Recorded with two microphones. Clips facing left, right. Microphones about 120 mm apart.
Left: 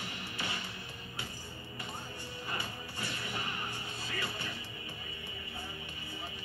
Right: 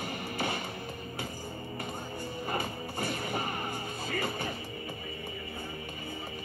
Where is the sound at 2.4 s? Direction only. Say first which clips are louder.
Right 6 dB; 50° right (ahead or behind).